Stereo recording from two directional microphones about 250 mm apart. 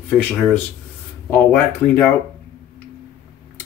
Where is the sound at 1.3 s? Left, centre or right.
Centre.